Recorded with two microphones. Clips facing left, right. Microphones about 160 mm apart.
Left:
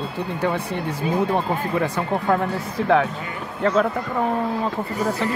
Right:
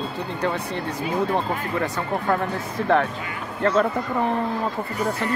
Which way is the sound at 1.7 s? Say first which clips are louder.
Left 2 dB; 10° left (ahead or behind).